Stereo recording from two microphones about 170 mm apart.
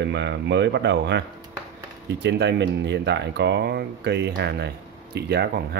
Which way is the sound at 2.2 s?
90° right.